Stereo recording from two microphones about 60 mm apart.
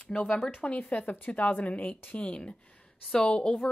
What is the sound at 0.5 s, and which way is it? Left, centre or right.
A woman's voice, left.